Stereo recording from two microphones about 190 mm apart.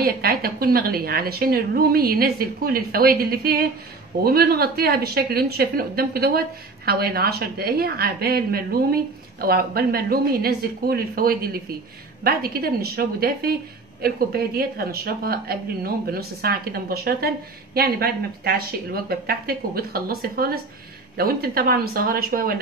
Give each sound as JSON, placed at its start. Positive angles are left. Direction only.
{"t": 0.0, "sound": "speech", "side_deg": -50}